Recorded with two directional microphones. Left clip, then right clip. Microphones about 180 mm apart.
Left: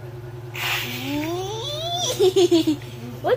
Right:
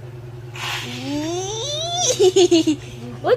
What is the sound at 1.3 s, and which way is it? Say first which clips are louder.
Baby laughter: right 3 dB; 30° right (ahead or behind).